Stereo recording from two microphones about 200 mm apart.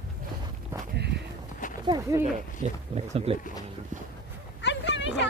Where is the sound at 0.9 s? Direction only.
55° right (ahead or behind).